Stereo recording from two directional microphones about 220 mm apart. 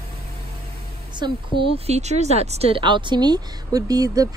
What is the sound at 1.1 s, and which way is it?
A woman's voice, 20° right (ahead or behind).